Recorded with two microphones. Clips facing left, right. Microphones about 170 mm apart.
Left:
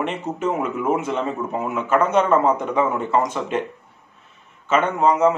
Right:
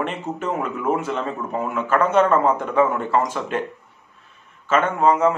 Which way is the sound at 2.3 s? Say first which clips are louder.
Left 1 dB; 15° left (ahead or behind).